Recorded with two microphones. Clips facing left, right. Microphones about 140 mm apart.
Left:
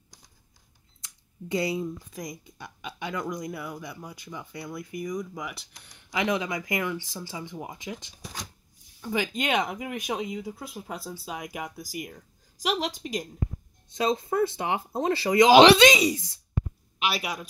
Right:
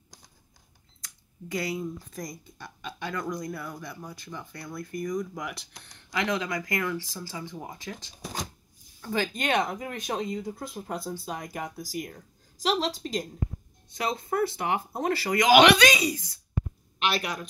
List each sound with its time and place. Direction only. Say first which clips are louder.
1.0 s a sound: left 2 dB; 25° left (ahead or behind)
2.1 s speech: left 1 dB; 15° left (ahead or behind)
6.1 s speech: left 1 dB; 20° left (ahead or behind)
13.9 s speech: left 3 dB; 20° left (ahead or behind)
17.0 s a man's voice: right 1 dB; 5° left (ahead or behind)